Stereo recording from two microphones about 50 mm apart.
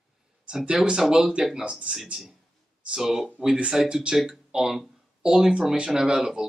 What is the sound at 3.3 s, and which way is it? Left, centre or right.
Speech, centre.